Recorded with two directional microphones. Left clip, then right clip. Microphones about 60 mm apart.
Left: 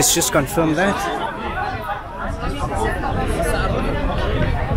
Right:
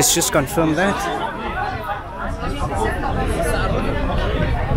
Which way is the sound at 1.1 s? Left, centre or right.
Centre.